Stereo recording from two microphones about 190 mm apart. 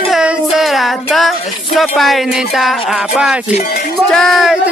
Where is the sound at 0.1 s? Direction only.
Centre (ahead or behind).